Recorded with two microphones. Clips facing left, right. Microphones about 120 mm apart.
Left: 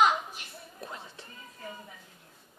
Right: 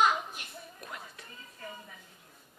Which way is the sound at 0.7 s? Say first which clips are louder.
Left 6 dB; 30° left (ahead or behind).